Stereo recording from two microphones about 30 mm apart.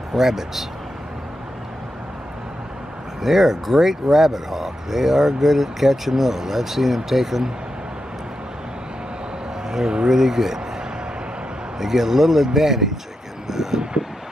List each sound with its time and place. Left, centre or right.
0.1 s speech: centre
3.2 s speech: centre
9.7 s a sound: centre
10.0 s speech: centre
11.8 s speech: centre